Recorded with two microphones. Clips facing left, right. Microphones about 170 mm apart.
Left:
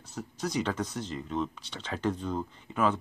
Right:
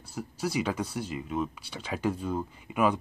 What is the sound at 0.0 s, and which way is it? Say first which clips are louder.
Speech: right 2 dB; 10° right (ahead or behind).